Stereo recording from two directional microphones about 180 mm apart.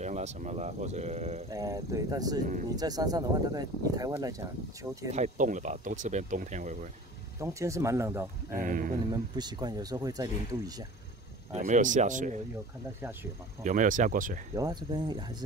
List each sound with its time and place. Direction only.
0.0 s speech: 40° right (ahead or behind)
1.5 s speech: 20° right (ahead or behind)
5.1 s speech: 40° right (ahead or behind)
7.3 s speech: 15° right (ahead or behind)
8.5 s speech: 50° right (ahead or behind)
9.1 s speech: 25° right (ahead or behind)
11.5 s speech: 40° right (ahead or behind)
13.7 s speech: 45° right (ahead or behind)
14.5 s speech: 20° right (ahead or behind)